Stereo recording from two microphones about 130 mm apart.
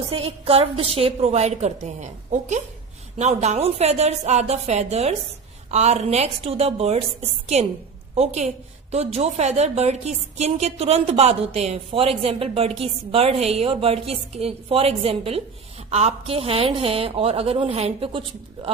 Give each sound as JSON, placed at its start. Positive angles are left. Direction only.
{"t": 0.1, "sound": "a woman's voice", "side_deg": -45}